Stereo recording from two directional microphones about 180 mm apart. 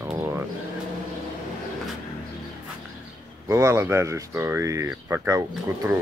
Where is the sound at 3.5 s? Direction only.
15° right (ahead or behind).